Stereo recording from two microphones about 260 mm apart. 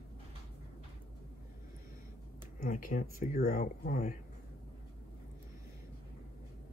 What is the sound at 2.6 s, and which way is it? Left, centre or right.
Speech, left.